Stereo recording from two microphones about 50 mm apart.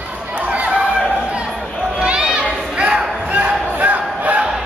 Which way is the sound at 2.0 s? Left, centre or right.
Right.